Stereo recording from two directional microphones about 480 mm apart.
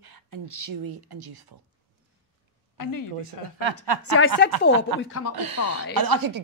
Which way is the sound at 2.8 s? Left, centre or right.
Left.